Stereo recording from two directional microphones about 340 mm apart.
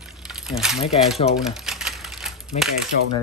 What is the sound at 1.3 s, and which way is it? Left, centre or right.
Typewriter, centre.